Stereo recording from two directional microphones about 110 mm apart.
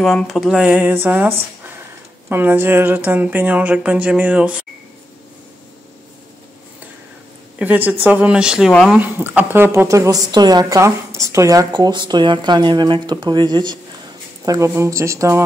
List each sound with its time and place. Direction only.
0.0 s speech: 5° left (ahead or behind); by 4.6 s 10° right (ahead or behind)
7.5 s a woman's voice: 15° right (ahead or behind)
11.7 s speech: 45° right (ahead or behind)
14.4 s a woman's voice: 30° right (ahead or behind)